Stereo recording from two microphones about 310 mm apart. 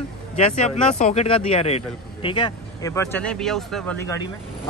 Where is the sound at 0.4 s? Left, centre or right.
Left.